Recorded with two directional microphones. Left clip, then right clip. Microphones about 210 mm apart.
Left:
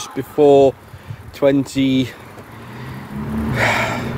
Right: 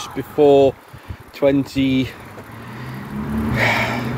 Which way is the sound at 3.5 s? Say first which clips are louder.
Left 1 dB; 20° left (ahead or behind).